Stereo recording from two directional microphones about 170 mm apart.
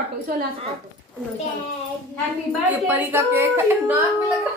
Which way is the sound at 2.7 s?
10° right (ahead or behind).